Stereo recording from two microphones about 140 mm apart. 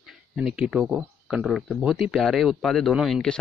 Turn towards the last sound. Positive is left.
turn(degrees=0)  # may be behind; listen again after turning